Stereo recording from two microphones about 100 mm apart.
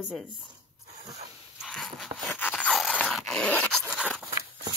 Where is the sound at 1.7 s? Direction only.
Centre (ahead or behind).